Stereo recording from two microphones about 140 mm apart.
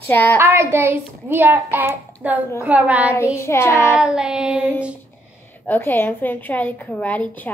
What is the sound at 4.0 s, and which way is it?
Speech, 5° right (ahead or behind).